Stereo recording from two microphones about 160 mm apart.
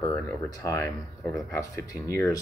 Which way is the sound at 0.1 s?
20° left (ahead or behind).